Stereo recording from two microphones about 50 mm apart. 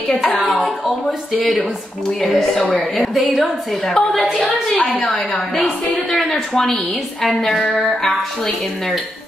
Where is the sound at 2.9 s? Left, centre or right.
Centre.